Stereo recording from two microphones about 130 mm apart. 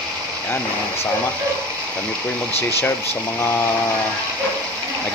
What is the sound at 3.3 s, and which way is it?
Mantra, 20° left (ahead or behind).